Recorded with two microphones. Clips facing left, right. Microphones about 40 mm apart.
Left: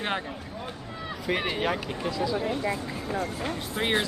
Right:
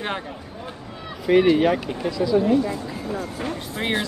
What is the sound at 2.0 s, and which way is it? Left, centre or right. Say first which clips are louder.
Speech: right 5 dB; centre.